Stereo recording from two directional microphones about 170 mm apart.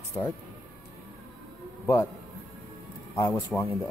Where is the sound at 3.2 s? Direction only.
20° left (ahead or behind).